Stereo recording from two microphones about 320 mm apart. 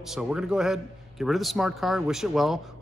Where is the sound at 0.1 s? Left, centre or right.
Centre.